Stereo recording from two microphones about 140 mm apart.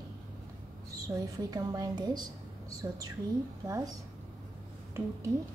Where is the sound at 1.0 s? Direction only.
25° right (ahead or behind).